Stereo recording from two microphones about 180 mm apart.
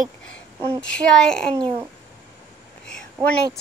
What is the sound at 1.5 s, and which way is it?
Speech, 25° right (ahead or behind).